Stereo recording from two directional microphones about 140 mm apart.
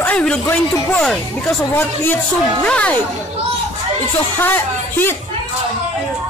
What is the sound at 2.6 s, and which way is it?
Speech, 10° left (ahead or behind).